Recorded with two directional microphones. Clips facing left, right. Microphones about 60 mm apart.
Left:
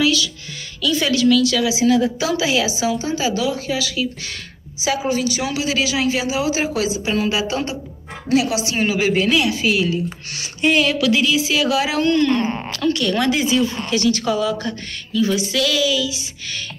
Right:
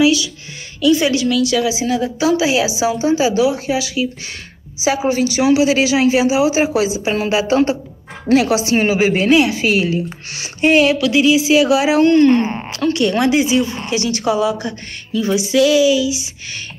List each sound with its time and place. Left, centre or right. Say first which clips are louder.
0.0 s speech: right 5 dB; centre
4.8 s speech: right 4 dB; right
11.0 s speech: right 4 dB; centre
12.1 s speech: right 5 dB; right
12.5 s speech: right 3 dB; centre